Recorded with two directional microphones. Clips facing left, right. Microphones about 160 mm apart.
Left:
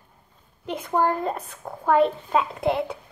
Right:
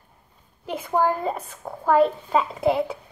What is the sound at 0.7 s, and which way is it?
Speech, 5° right (ahead or behind).